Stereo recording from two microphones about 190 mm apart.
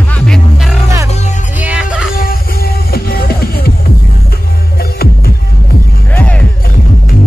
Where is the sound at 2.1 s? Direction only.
50° left (ahead or behind).